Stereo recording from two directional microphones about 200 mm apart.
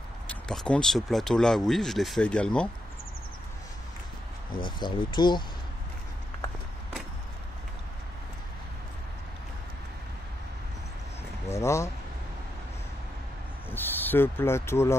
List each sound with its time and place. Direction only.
0.5 s speech: 5° left (ahead or behind)
4.6 s speech: 20° left (ahead or behind)
11.6 s a sound: 15° left (ahead or behind)
13.7 s speech: 10° left (ahead or behind)